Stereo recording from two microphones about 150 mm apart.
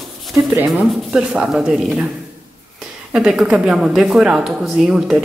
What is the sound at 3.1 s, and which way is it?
A woman's voice, 5° right (ahead or behind).